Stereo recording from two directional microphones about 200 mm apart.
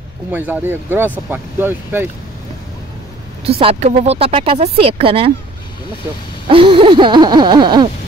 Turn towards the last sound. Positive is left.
turn(degrees=-20)  # may be behind; listen again after turning